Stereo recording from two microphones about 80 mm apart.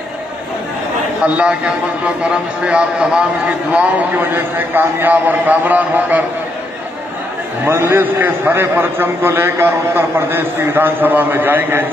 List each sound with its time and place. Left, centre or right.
1.2 s a man's voice: centre
7.6 s a man's voice: right